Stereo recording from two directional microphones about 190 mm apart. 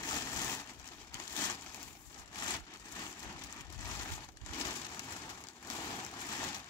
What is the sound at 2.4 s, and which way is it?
Vehicle, 20° left (ahead or behind).